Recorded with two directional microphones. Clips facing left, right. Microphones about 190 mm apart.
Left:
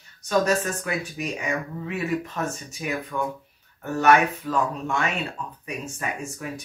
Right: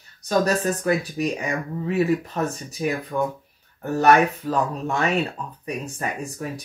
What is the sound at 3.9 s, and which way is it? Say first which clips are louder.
Speech: right 2 dB; 35° right (ahead or behind).